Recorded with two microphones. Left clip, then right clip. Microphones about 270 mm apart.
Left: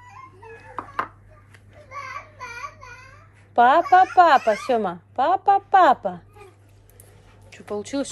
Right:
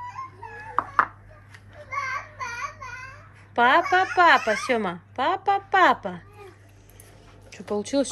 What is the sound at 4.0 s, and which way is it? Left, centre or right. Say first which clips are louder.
A child's voice: left 3 dB; centre.